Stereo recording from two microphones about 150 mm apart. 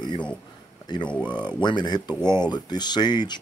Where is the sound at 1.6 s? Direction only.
30° left (ahead or behind).